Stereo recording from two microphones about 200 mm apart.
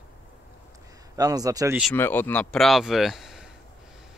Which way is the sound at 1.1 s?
20° right (ahead or behind).